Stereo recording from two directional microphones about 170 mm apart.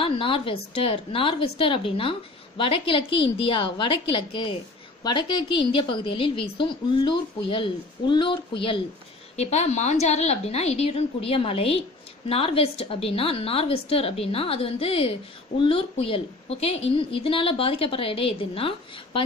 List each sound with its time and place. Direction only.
0.0 s a woman's voice: 30° left (ahead or behind)
9.4 s a woman's voice: 40° left (ahead or behind)